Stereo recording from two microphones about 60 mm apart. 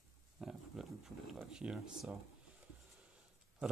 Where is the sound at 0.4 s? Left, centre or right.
Centre.